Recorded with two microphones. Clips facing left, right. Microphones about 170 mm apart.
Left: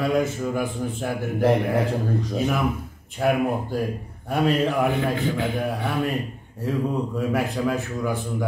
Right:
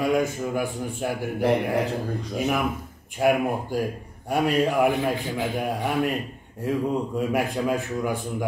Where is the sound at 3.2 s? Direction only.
10° right (ahead or behind).